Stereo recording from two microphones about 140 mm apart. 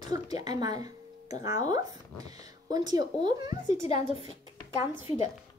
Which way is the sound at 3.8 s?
50° left (ahead or behind).